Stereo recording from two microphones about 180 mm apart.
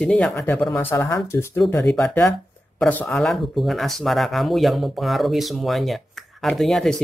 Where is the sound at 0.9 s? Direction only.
15° left (ahead or behind).